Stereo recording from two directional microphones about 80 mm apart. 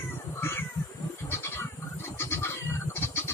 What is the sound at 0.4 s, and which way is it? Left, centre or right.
Cat, left.